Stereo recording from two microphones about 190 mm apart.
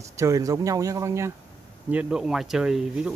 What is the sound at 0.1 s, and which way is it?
Speech, 15° right (ahead or behind).